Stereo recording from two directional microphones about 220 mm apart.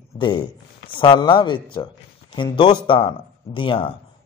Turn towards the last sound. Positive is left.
turn(degrees=25)  # may be behind; listen again after turning